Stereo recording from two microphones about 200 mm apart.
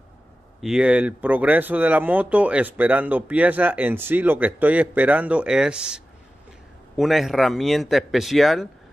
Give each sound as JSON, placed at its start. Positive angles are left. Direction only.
{"t": 0.6, "sound": "speech", "side_deg": -5}